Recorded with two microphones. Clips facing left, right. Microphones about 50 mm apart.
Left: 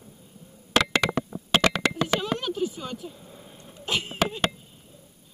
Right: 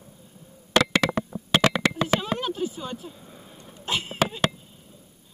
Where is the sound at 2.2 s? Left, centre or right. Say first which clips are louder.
Even; right.